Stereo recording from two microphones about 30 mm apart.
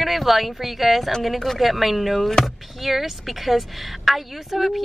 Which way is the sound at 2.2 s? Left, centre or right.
Centre.